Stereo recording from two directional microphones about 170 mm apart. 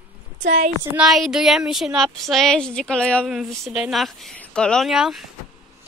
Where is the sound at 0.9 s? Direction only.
Centre (ahead or behind).